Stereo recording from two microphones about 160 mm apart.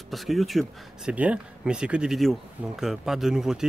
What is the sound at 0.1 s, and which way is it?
Speech, centre (ahead or behind).